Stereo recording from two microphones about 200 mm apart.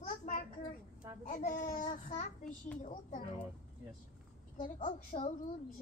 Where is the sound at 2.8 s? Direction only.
40° left (ahead or behind).